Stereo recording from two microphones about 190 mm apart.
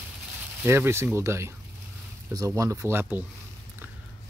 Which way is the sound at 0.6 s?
10° right (ahead or behind).